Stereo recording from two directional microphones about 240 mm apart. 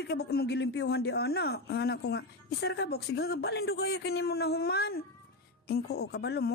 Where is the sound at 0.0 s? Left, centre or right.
Left.